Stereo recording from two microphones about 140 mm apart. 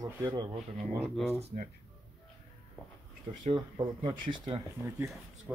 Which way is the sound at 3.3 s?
40° right (ahead or behind).